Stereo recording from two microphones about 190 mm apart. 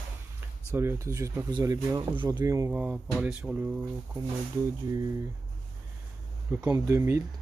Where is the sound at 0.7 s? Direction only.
15° right (ahead or behind).